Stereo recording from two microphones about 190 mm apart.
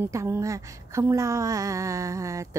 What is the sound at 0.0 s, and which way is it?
Mantra, 15° right (ahead or behind).